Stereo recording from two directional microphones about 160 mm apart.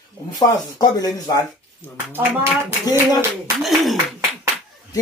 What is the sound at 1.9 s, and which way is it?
Speech, 15° right (ahead or behind).